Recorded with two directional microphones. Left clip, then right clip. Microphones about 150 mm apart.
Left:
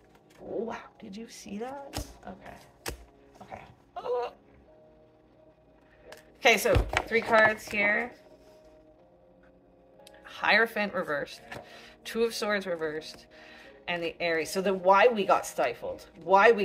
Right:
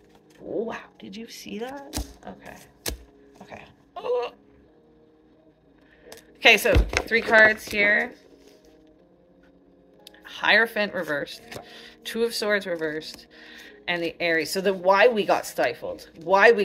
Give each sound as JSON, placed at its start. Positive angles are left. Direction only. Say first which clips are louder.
{"t": 0.7, "sound": "speech", "louder": "right 4 dB", "side_deg": -10}
{"t": 1.7, "sound": "speech", "louder": "right 3 dB", "side_deg": -20}
{"t": 3.4, "sound": "a sound", "louder": "right 2 dB", "side_deg": -30}
{"t": 6.4, "sound": "speech", "louder": "right 6 dB", "side_deg": 0}
{"t": 10.0, "sound": "speech", "louder": "right 4 dB", "side_deg": 0}